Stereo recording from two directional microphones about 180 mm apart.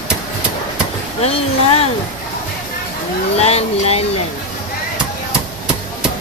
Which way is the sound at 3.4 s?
35° left (ahead or behind).